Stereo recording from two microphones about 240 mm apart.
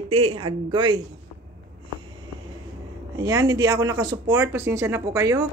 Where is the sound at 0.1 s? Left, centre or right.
Right.